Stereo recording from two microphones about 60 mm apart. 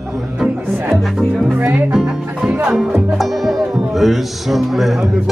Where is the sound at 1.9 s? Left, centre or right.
Centre.